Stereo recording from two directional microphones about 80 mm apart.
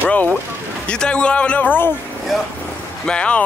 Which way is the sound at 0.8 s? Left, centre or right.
Centre.